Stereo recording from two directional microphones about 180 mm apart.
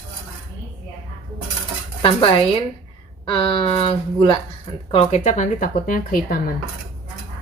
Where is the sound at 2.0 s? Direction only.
25° left (ahead or behind).